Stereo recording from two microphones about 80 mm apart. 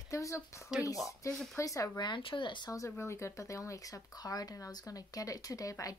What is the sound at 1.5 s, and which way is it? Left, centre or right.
Speech, left.